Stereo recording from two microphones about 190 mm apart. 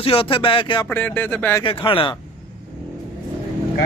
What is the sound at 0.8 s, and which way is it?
Speech, 10° left (ahead or behind).